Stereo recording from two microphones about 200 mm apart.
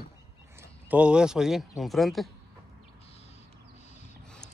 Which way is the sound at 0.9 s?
5° right (ahead or behind).